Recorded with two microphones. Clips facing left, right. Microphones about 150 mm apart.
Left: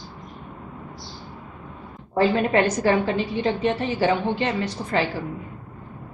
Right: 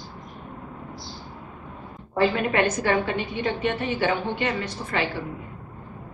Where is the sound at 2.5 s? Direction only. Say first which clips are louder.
Left 3 dB; 35° left (ahead or behind).